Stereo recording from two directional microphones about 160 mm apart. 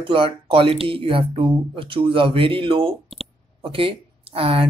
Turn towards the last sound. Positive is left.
turn(degrees=-35)  # may be behind; listen again after turning